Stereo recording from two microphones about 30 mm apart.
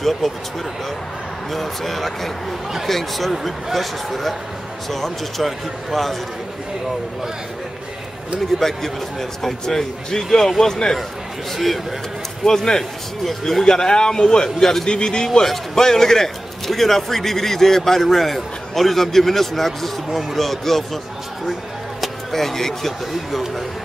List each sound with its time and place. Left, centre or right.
0.2 s speech: centre
1.5 s a man's voice: centre
8.5 s a man's voice: centre
11.5 s speech: centre
12.4 s a man's voice: centre
13.7 s a man's voice: left
14.9 s a man's voice: left; by 21.0 s centre
22.0 s speech: centre